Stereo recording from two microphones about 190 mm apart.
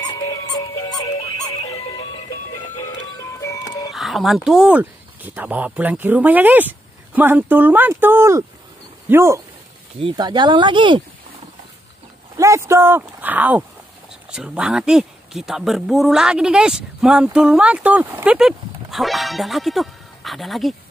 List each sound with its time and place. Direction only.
0.3 s music: 20° left (ahead or behind)
3.9 s speech: centre (ahead or behind)
9.9 s speech: 25° right (ahead or behind)
12.4 s speech: 15° right (ahead or behind); by 20.7 s centre (ahead or behind)